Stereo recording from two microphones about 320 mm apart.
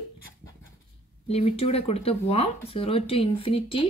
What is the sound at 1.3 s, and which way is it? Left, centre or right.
Speech, centre.